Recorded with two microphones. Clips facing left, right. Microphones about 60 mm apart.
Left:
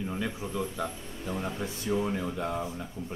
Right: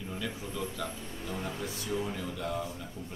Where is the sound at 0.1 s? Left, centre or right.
Left.